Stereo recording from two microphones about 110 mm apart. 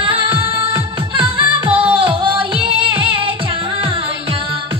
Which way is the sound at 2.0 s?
50° right (ahead or behind).